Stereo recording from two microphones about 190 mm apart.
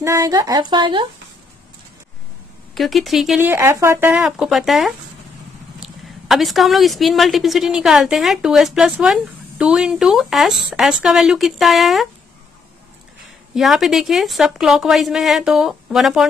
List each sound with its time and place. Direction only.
0.0 s speech: 15° right (ahead or behind)
2.7 s a woman's voice: centre (ahead or behind)
13.6 s a woman's voice: centre (ahead or behind)